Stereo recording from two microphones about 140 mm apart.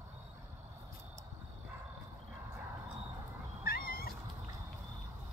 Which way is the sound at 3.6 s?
90° left.